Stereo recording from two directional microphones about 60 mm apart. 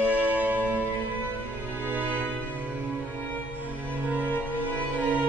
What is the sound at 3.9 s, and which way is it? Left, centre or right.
Music, right.